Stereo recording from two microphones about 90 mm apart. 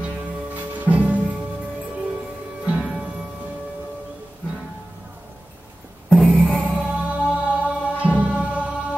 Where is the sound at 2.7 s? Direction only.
10° right (ahead or behind).